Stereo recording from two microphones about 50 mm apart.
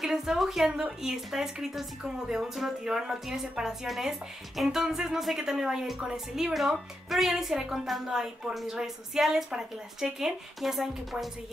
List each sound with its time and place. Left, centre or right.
0.0 s a woman's voice: centre
0.7 s a woman's voice: right
1.0 s a woman's voice: centre